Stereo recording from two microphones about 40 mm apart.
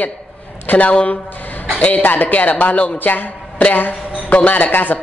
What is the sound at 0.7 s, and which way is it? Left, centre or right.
A woman's voice, left.